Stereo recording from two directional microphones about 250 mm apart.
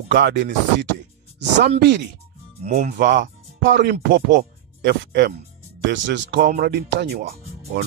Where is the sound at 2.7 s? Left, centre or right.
Right.